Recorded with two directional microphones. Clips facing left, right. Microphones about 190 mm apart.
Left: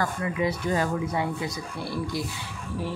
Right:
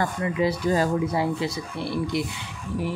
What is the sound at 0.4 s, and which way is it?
Speech, 35° right (ahead or behind).